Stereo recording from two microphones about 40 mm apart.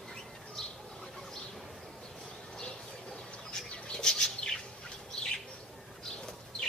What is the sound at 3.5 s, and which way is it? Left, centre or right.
Bird flight, centre.